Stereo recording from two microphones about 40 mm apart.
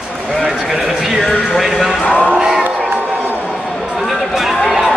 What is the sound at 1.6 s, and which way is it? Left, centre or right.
Speech, centre.